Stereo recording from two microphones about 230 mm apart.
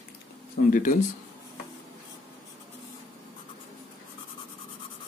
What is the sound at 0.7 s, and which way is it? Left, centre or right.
Speech, left.